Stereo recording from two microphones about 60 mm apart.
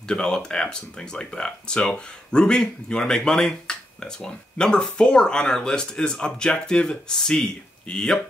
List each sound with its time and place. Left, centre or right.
0.1 s speech: centre